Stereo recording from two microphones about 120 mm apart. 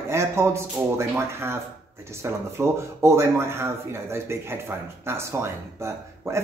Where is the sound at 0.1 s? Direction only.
20° right (ahead or behind).